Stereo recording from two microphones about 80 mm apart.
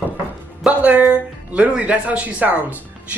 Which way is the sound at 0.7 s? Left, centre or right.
Centre.